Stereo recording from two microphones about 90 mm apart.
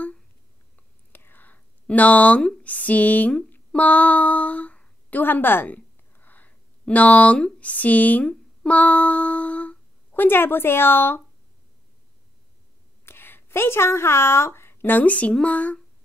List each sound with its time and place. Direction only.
1.1 s speech: 20° left (ahead or behind)
13.0 s a woman's voice: 25° left (ahead or behind)